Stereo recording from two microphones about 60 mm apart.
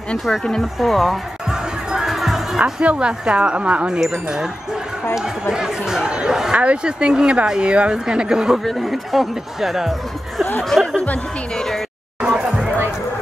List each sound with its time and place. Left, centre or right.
0.2 s speech: centre
1.5 s music: centre
2.6 s speech: centre
5.1 s speech: centre
8.6 s speech: centre
12.2 s a sound: centre